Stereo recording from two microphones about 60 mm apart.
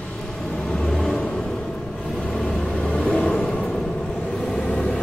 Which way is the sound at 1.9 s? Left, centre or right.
Centre.